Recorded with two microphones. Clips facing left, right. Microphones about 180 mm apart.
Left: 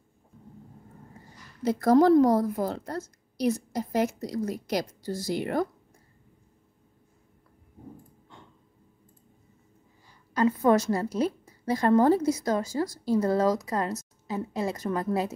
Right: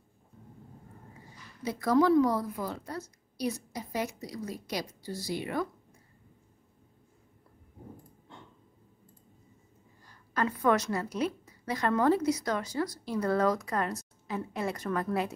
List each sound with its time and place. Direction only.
1.7 s a woman's voice: 45° left (ahead or behind)
10.3 s a woman's voice: 25° left (ahead or behind)